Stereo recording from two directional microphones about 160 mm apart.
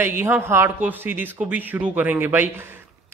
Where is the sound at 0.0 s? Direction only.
10° right (ahead or behind).